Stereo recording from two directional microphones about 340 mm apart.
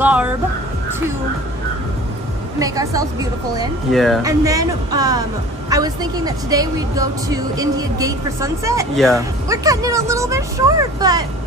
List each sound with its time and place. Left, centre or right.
0.0 s speech: centre
2.6 s a woman's voice: centre
3.9 s speech: centre
4.2 s a woman's voice: centre